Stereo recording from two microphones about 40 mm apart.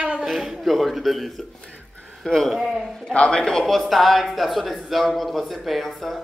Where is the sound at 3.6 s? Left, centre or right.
Centre.